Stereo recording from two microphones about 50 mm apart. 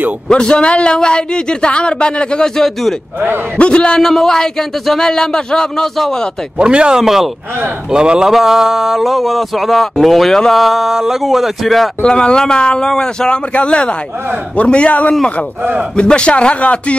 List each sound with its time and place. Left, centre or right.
0.3 s a man's voice: centre
3.5 s a man's voice: left
4.1 s speech: centre
6.6 s speech: centre
7.0 s speech: centre
7.9 s speech: centre
12.0 s a man's voice: centre